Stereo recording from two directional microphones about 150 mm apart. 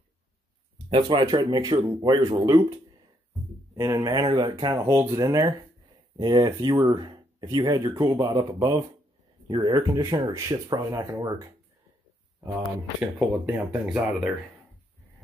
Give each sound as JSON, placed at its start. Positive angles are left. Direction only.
{"t": 0.8, "sound": "speech", "side_deg": -35}
{"t": 3.7, "sound": "speech", "side_deg": -20}
{"t": 4.7, "sound": "speech", "side_deg": -15}
{"t": 12.4, "sound": "speech", "side_deg": -20}
{"t": 13.5, "sound": "speech", "side_deg": -10}